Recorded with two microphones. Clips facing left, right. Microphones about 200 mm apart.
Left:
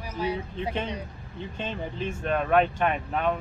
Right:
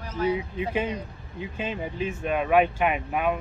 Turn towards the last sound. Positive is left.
turn(degrees=-10)  # may be behind; listen again after turning